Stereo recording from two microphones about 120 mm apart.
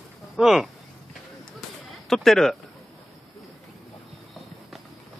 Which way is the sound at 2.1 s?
Centre (ahead or behind).